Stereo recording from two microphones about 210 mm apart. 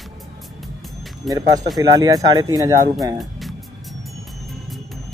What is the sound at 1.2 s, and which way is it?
Speech, 15° right (ahead or behind).